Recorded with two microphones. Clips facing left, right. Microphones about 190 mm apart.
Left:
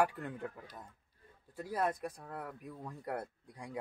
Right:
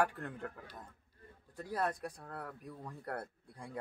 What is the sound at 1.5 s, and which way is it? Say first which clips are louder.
Speech: left 2 dB; 10° left (ahead or behind).